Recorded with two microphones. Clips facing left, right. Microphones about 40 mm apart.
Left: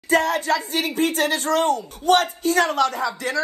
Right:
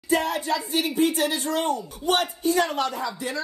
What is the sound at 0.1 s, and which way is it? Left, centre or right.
Speech, left.